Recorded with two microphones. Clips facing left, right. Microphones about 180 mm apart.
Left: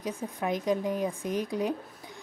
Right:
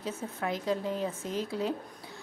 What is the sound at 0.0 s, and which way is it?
A woman's voice, 15° left (ahead or behind).